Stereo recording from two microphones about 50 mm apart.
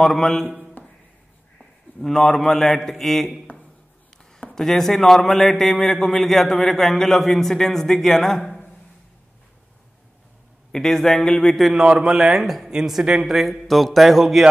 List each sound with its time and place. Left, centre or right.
0.0 s a man's voice: centre
0.8 s a sound: left
1.6 s a man's voice: centre
4.6 s a man's voice: centre
10.7 s a man's voice: centre
11.7 s speech: centre
13.0 s speech: centre
13.3 s a man's voice: centre